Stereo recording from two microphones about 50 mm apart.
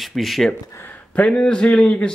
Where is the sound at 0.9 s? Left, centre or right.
Left.